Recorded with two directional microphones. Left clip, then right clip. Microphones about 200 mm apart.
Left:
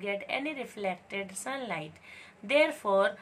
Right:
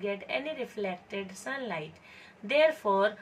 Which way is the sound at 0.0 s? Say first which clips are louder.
Even; 25° left (ahead or behind).